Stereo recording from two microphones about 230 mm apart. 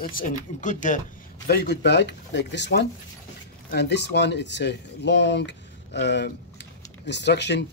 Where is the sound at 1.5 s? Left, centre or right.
Left.